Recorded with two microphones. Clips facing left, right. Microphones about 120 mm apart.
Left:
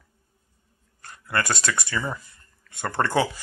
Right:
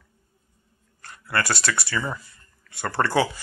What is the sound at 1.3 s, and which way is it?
Speech, 20° left (ahead or behind).